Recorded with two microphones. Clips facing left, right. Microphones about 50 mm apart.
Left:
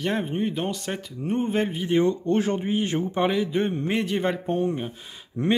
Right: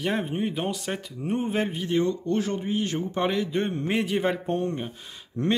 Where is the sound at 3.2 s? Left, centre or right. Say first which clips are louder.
Left 2 dB; centre.